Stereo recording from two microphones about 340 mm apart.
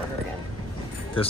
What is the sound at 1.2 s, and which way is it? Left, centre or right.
Speech, centre.